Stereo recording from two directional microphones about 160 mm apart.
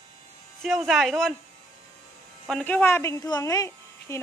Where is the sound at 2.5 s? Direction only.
10° left (ahead or behind).